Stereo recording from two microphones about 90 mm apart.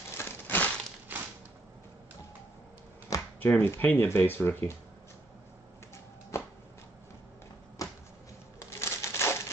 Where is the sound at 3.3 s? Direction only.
25° left (ahead or behind).